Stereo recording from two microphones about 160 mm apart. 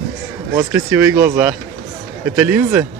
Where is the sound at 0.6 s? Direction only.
15° right (ahead or behind).